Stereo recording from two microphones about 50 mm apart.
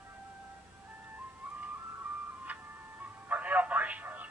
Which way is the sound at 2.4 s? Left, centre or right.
Right.